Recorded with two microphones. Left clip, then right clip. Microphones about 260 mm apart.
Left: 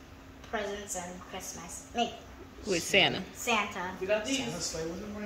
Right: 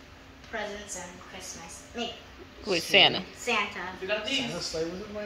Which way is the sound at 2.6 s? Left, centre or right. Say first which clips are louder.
Right 5 dB; centre.